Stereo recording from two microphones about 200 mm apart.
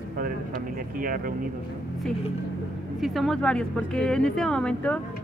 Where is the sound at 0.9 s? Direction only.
45° right (ahead or behind).